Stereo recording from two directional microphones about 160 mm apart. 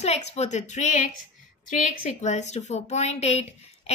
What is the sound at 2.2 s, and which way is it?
A woman's voice, 45° left (ahead or behind).